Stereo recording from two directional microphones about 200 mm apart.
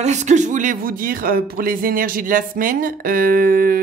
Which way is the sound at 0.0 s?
35° right (ahead or behind).